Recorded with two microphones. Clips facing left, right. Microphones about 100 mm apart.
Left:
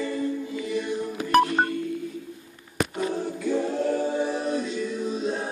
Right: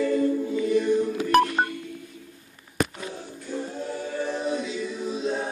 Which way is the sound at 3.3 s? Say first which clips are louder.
Left 6 dB; 90° left.